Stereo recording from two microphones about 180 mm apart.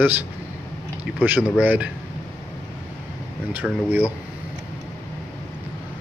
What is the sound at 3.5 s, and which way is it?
Speech, 5° right (ahead or behind).